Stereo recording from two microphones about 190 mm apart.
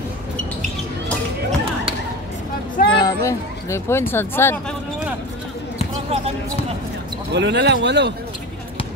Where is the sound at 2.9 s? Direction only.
20° left (ahead or behind).